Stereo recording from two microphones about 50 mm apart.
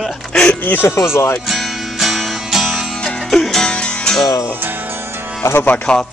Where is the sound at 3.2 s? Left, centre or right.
Centre.